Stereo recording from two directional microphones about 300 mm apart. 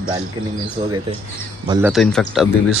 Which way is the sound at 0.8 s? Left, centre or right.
Centre.